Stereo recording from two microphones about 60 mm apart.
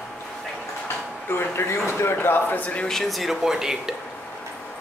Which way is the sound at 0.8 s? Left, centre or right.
Left.